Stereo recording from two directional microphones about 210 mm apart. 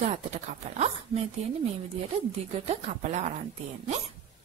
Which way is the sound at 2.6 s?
35° right (ahead or behind).